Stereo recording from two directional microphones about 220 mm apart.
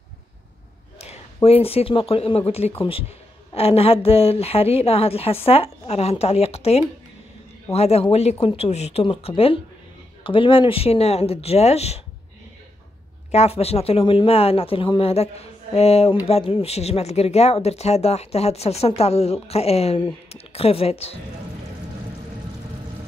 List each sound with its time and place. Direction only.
0.9 s speech: 25° left (ahead or behind)
13.3 s speech: 30° left (ahead or behind)